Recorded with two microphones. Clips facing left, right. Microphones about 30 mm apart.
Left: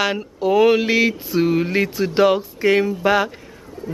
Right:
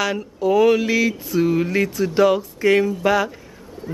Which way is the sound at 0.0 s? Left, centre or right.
Left.